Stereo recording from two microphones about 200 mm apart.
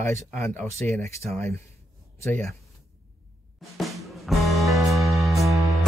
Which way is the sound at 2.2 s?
5° left (ahead or behind).